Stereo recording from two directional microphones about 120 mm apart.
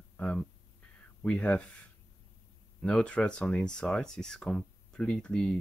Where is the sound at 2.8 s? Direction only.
10° left (ahead or behind).